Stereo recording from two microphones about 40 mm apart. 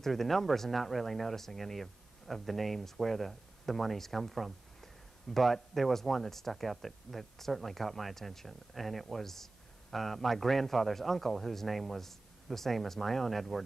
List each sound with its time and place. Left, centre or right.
0.0 s speech: centre